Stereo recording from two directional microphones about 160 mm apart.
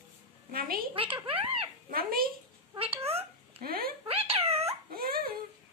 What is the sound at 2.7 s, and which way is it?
Cat, 35° right (ahead or behind).